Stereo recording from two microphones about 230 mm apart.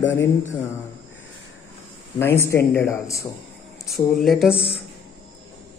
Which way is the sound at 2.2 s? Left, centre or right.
Centre.